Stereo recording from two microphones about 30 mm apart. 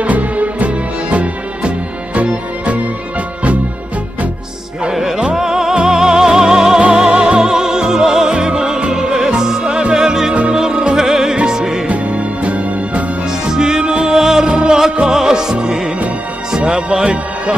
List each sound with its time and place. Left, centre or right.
0.0 s music: right
4.9 s music: centre
11.0 s music: centre
11.9 s music: right
13.5 s music: right
14.5 s music: right
15.0 s music: centre
16.5 s music: right